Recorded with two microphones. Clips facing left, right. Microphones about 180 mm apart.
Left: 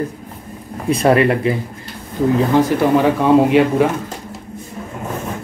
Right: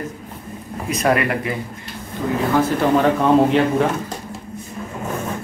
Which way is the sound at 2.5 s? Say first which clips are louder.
Even; 10° left (ahead or behind).